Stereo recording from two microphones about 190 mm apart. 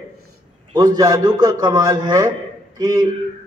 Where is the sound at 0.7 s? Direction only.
20° right (ahead or behind).